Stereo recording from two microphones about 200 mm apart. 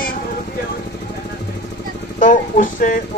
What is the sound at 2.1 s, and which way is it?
Speech, 40° left (ahead or behind).